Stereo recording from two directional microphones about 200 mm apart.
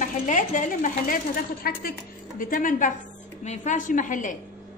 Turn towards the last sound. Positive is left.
turn(degrees=40)  # may be behind; listen again after turning